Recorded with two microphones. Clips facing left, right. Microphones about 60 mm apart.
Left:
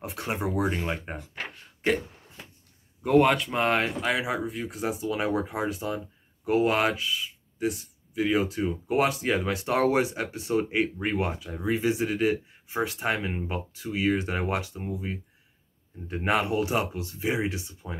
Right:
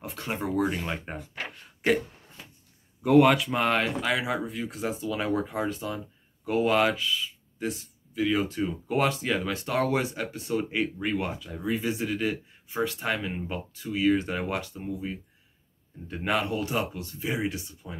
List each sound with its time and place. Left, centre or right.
0.0 s speech: left
0.9 s a sound: centre
3.0 s speech: centre
5.1 s speech: centre
6.7 s speech: centre; by 18.0 s left